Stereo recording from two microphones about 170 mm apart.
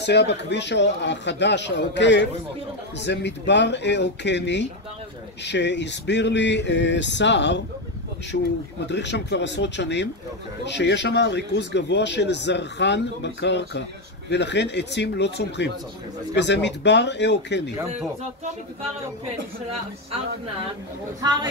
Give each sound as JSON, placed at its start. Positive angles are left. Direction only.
{"t": 0.0, "sound": "speech", "side_deg": 90}
{"t": 21.2, "sound": "speech", "side_deg": -25}